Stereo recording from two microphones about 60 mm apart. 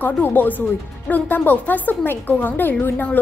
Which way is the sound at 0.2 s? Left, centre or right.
Left.